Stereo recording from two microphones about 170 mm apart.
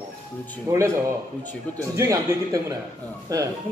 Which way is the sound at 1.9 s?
20° right (ahead or behind).